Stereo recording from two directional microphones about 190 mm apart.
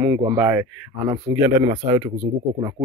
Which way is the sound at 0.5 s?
15° right (ahead or behind).